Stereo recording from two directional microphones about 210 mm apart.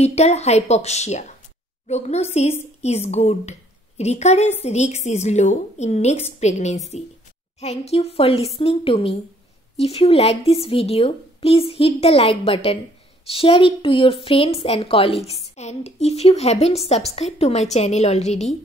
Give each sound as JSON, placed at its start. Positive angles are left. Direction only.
{"t": 0.0, "sound": "a woman's voice", "side_deg": 30}